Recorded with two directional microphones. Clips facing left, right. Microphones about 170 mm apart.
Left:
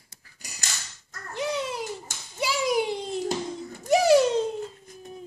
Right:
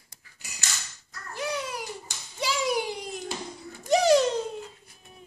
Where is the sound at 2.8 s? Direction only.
25° left (ahead or behind).